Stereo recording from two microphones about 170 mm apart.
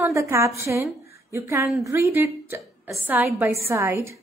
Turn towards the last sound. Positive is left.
turn(degrees=-15)  # may be behind; listen again after turning